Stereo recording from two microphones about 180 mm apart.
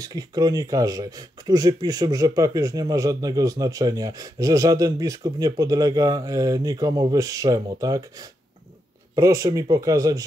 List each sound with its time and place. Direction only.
0.0 s speech: 20° right (ahead or behind)